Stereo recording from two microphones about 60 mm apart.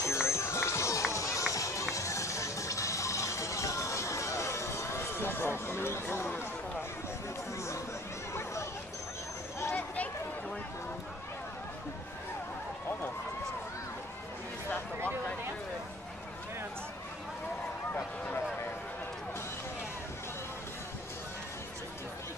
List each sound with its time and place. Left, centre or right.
0.0 s run: left
1.5 s music: left